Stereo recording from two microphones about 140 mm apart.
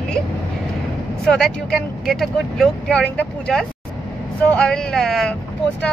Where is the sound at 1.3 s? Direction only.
5° left (ahead or behind).